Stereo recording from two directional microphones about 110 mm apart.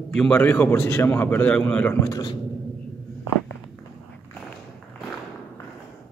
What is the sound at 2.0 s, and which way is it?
Speech, 35° left (ahead or behind).